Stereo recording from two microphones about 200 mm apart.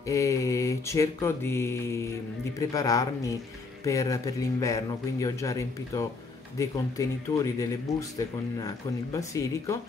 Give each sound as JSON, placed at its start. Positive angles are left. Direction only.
{"t": 0.0, "sound": "speech", "side_deg": 15}